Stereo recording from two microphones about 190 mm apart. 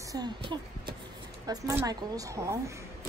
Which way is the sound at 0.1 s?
20° right (ahead or behind).